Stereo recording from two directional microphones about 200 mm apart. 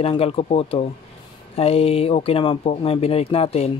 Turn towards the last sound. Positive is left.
turn(degrees=30)  # may be behind; listen again after turning